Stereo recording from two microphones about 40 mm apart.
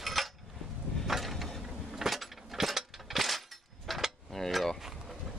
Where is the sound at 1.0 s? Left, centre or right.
Centre.